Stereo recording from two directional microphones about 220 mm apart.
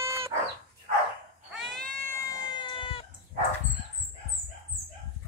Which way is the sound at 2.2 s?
15° left (ahead or behind).